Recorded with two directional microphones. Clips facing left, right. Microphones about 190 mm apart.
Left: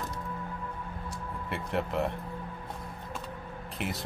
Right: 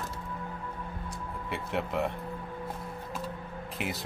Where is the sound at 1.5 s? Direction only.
Centre (ahead or behind).